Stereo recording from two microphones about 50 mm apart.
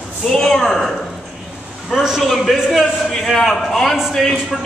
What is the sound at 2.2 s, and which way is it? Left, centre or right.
A man's voice, centre.